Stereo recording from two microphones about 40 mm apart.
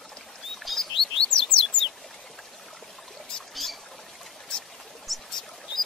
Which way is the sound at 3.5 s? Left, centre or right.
Centre.